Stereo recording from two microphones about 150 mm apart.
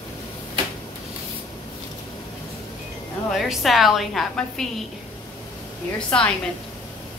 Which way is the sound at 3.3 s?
Centre (ahead or behind).